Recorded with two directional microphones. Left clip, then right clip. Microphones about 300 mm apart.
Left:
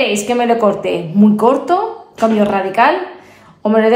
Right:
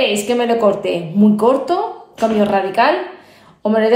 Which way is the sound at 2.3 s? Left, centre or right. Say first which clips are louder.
Even; left.